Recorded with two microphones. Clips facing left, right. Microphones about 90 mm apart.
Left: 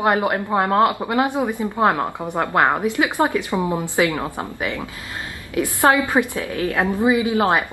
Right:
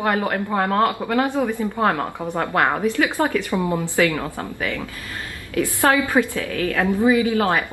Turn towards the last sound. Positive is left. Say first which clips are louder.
# left 1 dB
turn(degrees=20)  # may be behind; listen again after turning